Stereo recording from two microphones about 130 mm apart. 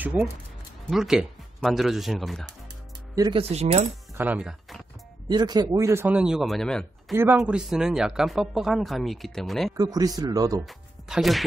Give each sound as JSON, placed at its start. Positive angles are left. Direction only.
{"t": 0.8, "sound": "speech", "side_deg": -5}
{"t": 3.3, "sound": "speech", "side_deg": -55}
{"t": 4.1, "sound": "speech", "side_deg": -15}
{"t": 5.3, "sound": "speech", "side_deg": -35}
{"t": 7.3, "sound": "speech", "side_deg": -5}
{"t": 9.8, "sound": "speech", "side_deg": -30}
{"t": 10.6, "sound": "speech", "side_deg": 0}